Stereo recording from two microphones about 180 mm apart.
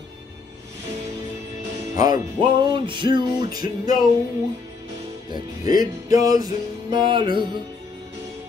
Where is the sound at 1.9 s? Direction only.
20° right (ahead or behind).